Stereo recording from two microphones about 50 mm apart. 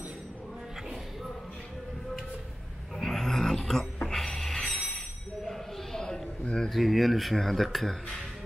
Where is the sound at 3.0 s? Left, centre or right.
Centre.